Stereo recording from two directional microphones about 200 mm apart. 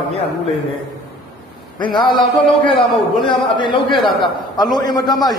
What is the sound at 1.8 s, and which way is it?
Speech, 25° left (ahead or behind).